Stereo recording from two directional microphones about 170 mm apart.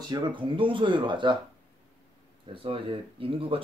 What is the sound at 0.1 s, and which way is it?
Speech, 30° right (ahead or behind).